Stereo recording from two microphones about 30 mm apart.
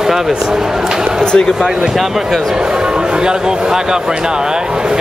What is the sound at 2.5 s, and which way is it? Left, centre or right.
Speech, right.